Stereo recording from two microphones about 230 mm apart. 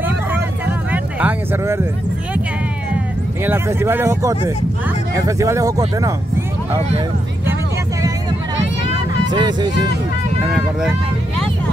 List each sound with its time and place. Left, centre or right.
0.0 s vehicle: centre
3.4 s speech: centre
9.3 s speech: centre
10.5 s speech: centre